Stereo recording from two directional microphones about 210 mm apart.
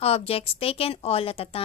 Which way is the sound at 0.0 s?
30° left (ahead or behind).